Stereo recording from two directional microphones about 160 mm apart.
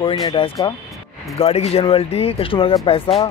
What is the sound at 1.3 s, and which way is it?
Speech, 40° left (ahead or behind).